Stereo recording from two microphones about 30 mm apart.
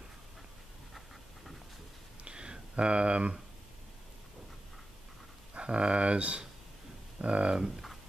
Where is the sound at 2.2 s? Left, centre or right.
Right.